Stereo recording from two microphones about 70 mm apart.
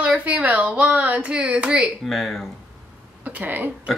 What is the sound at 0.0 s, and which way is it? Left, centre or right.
Speech, centre.